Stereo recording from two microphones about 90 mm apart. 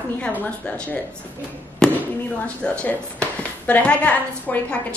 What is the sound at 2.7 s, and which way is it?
A woman's voice, 10° left (ahead or behind).